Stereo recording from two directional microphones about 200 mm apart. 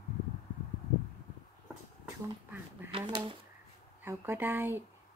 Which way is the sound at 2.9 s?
25° right (ahead or behind).